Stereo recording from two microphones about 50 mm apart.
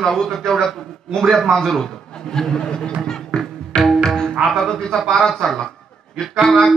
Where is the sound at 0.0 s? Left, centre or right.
Centre.